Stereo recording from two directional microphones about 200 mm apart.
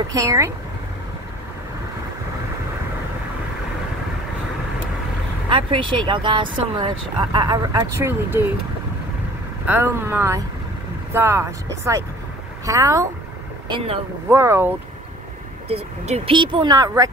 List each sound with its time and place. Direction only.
0.1 s speech: 15° right (ahead or behind)
5.5 s speech: 25° right (ahead or behind)
9.7 s speech: 10° right (ahead or behind)
14.3 s speech: 10° right (ahead or behind)
15.7 s speech: 30° right (ahead or behind)